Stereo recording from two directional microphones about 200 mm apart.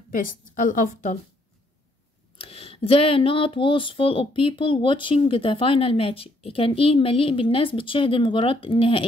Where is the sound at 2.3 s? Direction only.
30° left (ahead or behind).